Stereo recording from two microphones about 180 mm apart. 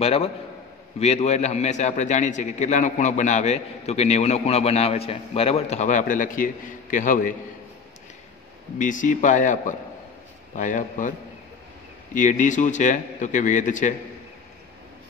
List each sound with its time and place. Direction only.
0.0 s a man's voice: 35° left (ahead or behind)
8.7 s a man's voice: 45° left (ahead or behind)